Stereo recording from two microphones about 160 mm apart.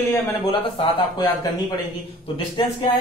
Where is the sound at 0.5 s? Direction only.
30° left (ahead or behind).